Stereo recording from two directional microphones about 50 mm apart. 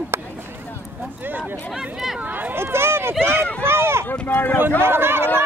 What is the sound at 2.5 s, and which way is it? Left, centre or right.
Run, right.